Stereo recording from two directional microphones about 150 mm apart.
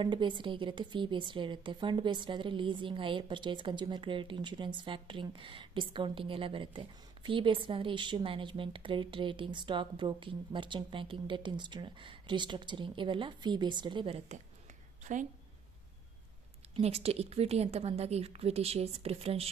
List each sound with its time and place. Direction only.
0.0 s a woman's voice: 30° right (ahead or behind)
16.8 s a woman's voice: 40° right (ahead or behind)